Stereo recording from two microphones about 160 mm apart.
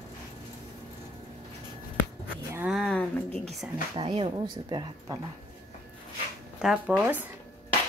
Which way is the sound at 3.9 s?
35° right (ahead or behind).